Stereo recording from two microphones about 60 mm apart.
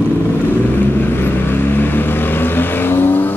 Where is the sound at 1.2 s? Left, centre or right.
Left.